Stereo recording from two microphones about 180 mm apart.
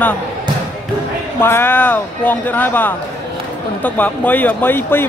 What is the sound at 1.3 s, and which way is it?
Speech, 10° left (ahead or behind).